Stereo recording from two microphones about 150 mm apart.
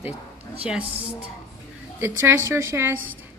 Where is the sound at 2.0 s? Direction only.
15° right (ahead or behind).